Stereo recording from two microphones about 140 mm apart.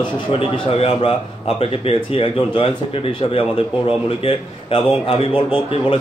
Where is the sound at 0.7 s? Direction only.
45° left (ahead or behind).